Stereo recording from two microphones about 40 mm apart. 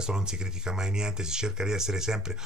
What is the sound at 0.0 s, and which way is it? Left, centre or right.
Speech, centre.